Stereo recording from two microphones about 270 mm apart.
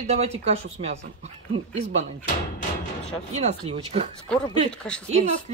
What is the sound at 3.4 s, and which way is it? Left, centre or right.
Speech, right.